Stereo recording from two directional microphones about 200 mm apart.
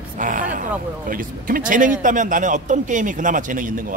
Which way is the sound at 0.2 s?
40° right (ahead or behind).